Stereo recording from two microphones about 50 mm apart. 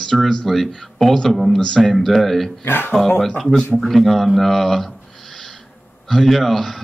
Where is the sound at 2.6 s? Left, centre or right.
Left.